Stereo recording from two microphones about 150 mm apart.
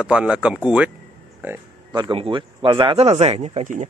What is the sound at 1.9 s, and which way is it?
Speech, 30° right (ahead or behind).